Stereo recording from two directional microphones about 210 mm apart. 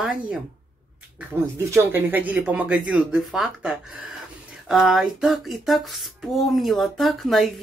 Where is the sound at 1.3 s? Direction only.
10° right (ahead or behind).